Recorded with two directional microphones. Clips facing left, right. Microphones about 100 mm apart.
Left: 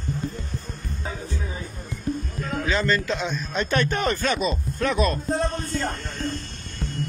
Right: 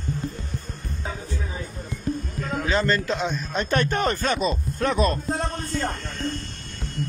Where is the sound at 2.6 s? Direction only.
35° right (ahead or behind).